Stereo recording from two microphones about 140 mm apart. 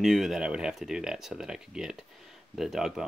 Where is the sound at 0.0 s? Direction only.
Centre (ahead or behind).